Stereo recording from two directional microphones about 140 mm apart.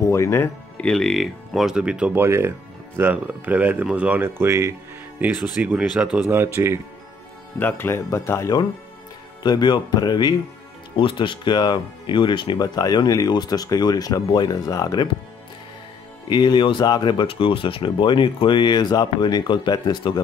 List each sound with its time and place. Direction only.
0.0 s music: 20° left (ahead or behind)
0.8 s speech: 5° left (ahead or behind)
2.2 s speech: 20° right (ahead or behind)
7.5 s speech: 15° left (ahead or behind); by 15.1 s 30° left (ahead or behind)
16.3 s speech: 35° left (ahead or behind)